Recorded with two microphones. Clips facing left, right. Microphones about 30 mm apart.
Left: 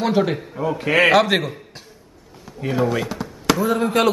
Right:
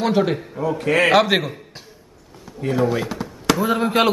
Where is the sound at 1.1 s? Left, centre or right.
Centre.